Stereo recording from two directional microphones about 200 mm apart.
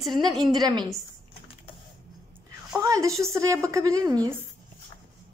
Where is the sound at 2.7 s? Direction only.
15° right (ahead or behind).